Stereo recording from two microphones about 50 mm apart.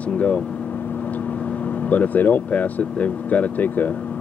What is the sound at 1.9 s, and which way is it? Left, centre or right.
Speech, left.